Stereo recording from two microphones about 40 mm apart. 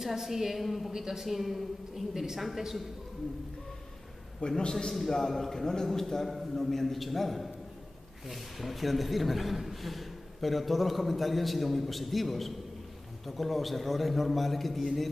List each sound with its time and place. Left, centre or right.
0.0 s a woman's voice: centre
4.4 s a man's voice: centre
4.9 s a man's voice: centre